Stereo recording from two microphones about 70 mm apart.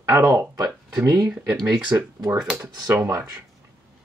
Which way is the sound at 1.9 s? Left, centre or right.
Right.